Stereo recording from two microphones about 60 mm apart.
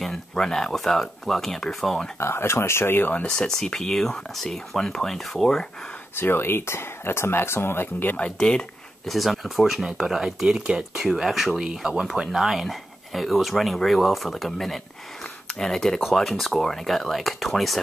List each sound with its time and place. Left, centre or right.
0.0 s speech: centre
2.1 s speech: left
3.3 s speech: centre
6.1 s speech: left
8.2 s speech: centre
9.1 s speech: centre